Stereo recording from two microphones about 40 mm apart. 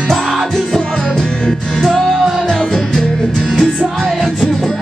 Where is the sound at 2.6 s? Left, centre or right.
Centre.